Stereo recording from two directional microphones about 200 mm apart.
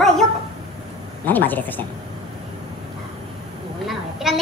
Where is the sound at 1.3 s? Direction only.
10° left (ahead or behind).